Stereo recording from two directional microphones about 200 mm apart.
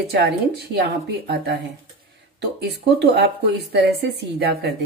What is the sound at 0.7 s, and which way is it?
Speech, 55° right (ahead or behind).